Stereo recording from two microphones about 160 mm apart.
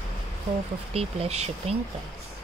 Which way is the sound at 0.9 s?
40° right (ahead or behind).